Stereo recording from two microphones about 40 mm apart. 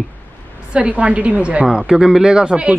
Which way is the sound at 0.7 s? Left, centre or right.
Right.